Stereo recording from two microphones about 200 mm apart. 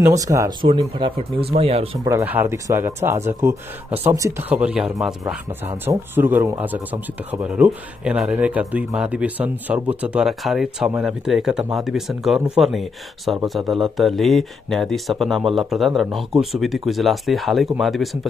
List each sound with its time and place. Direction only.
0.0 s speech: 15° right (ahead or behind)
2.0 s speech: 10° right (ahead or behind)